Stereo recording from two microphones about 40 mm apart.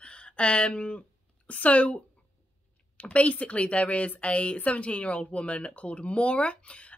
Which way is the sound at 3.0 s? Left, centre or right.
Left.